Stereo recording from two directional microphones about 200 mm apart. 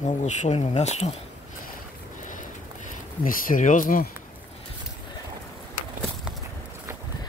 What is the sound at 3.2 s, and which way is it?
Speech, 45° left (ahead or behind).